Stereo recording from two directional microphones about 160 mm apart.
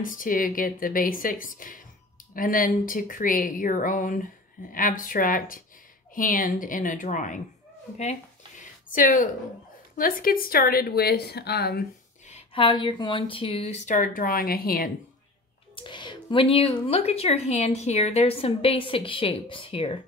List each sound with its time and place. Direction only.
0.0 s speech: 60° left (ahead or behind)
8.0 s a sound: 50° left (ahead or behind)
9.9 s a woman's voice: 60° left (ahead or behind); by 11.8 s 90° left
12.3 s a sound: 45° left (ahead or behind)
12.6 s speech: 30° left (ahead or behind)
13.9 s speech: 60° left (ahead or behind)
15.7 s speech: 30° left (ahead or behind)